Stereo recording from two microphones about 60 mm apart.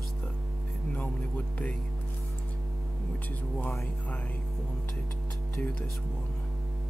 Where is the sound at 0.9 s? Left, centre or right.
Left.